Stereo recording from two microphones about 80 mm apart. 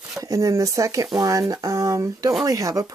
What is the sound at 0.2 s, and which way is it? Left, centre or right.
Speech, right.